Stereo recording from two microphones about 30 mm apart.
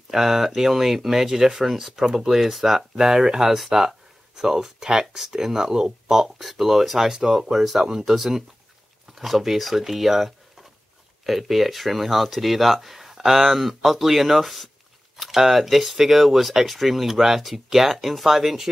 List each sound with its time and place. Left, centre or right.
0.1 s speech: centre
7.1 s speech: centre